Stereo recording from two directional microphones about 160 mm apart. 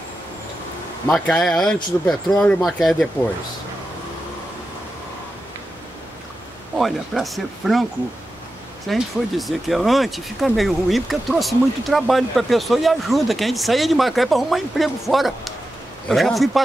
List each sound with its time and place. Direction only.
1.1 s speech: centre (ahead or behind)
6.8 s speech: centre (ahead or behind)
8.8 s speech: centre (ahead or behind)